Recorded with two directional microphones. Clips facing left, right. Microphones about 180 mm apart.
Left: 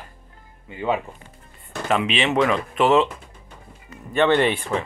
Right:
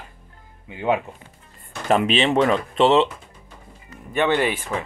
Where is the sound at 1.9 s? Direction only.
40° right (ahead or behind); by 3.0 s 25° right (ahead or behind).